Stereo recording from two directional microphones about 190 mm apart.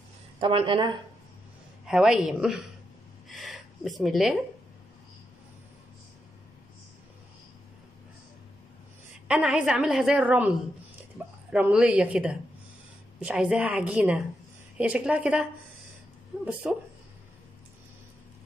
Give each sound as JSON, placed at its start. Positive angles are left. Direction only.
{"t": 0.4, "sound": "speech", "side_deg": -25}
{"t": 1.9, "sound": "a woman's voice", "side_deg": -5}
{"t": 9.3, "sound": "a woman's voice", "side_deg": -5}
{"t": 11.2, "sound": "dog", "side_deg": -10}
{"t": 11.5, "sound": "a woman's voice", "side_deg": -5}
{"t": 16.6, "sound": "a woman's voice", "side_deg": -5}